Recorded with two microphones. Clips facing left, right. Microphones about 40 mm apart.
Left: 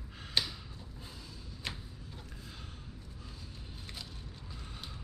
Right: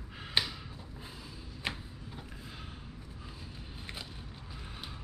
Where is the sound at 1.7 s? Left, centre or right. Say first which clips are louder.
Right 4 dB; centre.